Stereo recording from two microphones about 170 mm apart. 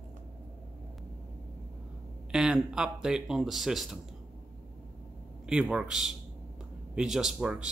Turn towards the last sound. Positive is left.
turn(degrees=-5)  # may be behind; listen again after turning